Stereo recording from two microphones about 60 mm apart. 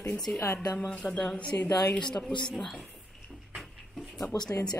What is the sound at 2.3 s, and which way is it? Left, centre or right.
Speech, centre.